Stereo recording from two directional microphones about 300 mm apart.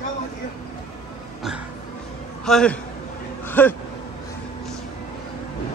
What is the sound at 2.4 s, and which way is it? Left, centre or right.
Speech, centre.